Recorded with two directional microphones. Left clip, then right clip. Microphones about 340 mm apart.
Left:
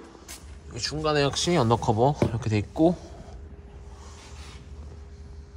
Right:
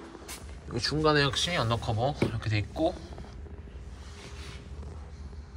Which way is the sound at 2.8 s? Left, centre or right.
Left.